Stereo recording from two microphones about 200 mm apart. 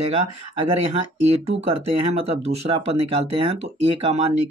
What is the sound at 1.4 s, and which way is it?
Speech, 30° right (ahead or behind).